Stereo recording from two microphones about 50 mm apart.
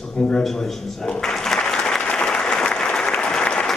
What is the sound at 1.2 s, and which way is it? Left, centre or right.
Applause, centre.